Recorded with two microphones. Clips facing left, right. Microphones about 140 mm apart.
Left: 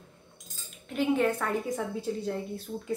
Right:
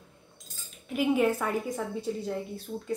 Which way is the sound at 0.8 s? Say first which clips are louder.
Right 1 dB; 10° right (ahead or behind).